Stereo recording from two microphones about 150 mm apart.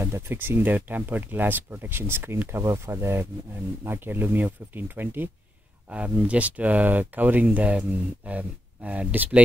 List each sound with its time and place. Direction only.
0.0 s speech: 15° right (ahead or behind)